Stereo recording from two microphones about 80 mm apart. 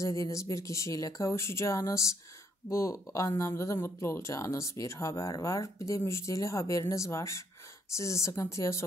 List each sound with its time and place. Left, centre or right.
0.0 s speech: left